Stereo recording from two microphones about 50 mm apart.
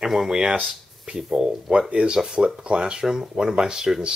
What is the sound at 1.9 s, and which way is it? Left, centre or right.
Speech, right.